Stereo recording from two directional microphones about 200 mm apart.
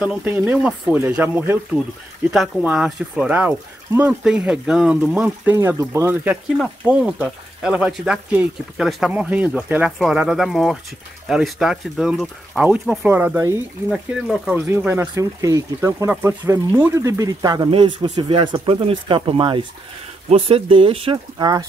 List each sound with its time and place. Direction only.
0.0 s speech: 10° right (ahead or behind)